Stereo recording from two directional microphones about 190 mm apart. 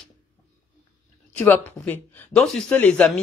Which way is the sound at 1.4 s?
5° left (ahead or behind).